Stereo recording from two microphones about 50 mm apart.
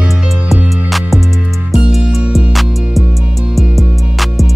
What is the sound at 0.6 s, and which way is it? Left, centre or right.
Music, centre.